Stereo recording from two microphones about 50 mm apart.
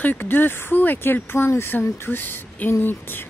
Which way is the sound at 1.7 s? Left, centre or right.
Left.